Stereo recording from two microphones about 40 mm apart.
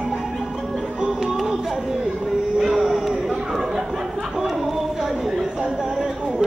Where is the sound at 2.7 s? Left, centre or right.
Centre.